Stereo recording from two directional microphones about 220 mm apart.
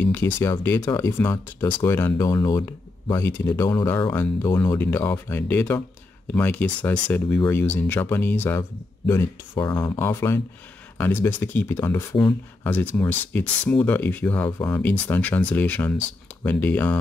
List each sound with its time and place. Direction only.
0.0 s speech: 10° left (ahead or behind)